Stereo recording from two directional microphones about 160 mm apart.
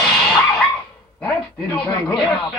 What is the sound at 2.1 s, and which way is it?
Speech, centre (ahead or behind).